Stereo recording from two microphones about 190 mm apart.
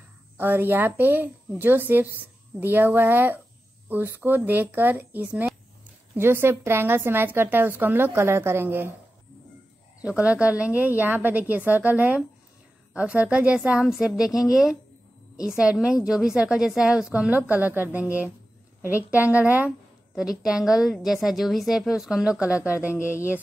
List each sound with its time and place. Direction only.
0.4 s a woman's voice: 10° right (ahead or behind)
10.0 s a woman's voice: 5° right (ahead or behind)
19.0 s a woman's voice: 10° right (ahead or behind)
22.9 s a sound: 15° left (ahead or behind)